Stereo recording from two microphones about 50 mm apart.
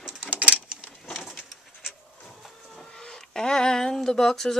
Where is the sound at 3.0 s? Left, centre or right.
Centre.